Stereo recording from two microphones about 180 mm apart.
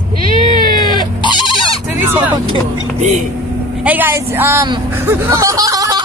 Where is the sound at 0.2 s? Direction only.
25° left (ahead or behind).